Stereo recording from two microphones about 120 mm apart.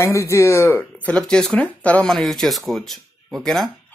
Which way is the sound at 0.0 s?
25° left (ahead or behind).